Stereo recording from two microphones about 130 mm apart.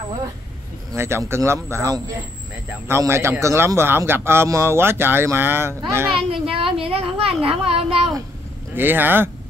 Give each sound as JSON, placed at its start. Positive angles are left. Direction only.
{"t": 0.9, "sound": "a man's voice", "side_deg": -20}
{"t": 6.5, "sound": "a child's voice", "side_deg": -45}
{"t": 8.7, "sound": "speech", "side_deg": -15}